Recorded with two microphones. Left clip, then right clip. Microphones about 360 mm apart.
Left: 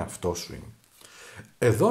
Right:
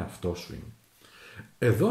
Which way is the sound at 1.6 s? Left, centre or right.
Centre.